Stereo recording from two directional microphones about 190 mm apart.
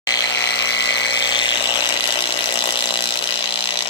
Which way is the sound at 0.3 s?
65° left (ahead or behind).